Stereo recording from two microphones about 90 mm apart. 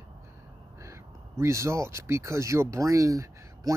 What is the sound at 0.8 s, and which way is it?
Speech, 35° right (ahead or behind).